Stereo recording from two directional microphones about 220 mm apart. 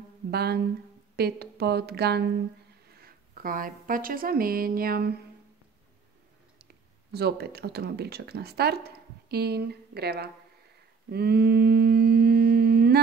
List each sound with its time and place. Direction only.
0.3 s a woman's voice: 45° right (ahead or behind)
6.6 s speech: 45° right (ahead or behind)
11.1 s humming: 45° right (ahead or behind)